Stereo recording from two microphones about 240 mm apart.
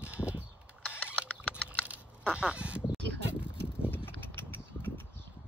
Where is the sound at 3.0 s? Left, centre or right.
Right.